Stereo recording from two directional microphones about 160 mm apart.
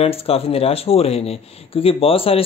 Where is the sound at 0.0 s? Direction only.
40° left (ahead or behind).